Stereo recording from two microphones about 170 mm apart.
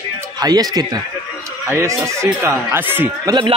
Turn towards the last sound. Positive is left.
turn(degrees=-10)  # may be behind; listen again after turning